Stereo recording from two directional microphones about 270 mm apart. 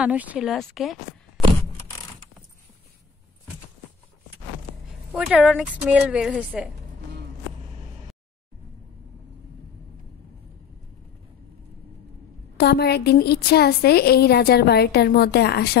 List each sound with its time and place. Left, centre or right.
0.0 s a woman's voice: centre
1.4 s a sound: centre
5.1 s a woman's voice: centre
12.5 s a woman's voice: left